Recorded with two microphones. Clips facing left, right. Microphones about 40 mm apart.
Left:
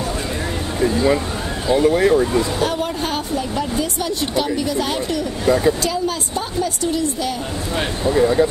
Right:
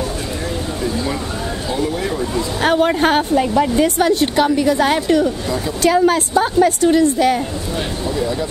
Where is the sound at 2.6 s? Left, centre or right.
Right.